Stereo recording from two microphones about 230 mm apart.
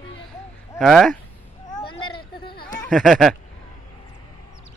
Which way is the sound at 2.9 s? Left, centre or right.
Centre.